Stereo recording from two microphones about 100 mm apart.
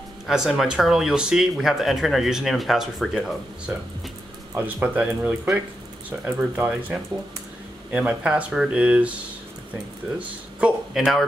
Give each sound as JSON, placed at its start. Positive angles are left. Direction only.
{"t": 0.3, "sound": "speech", "side_deg": -5}
{"t": 4.6, "sound": "speech", "side_deg": -15}
{"t": 10.1, "sound": "speech", "side_deg": -10}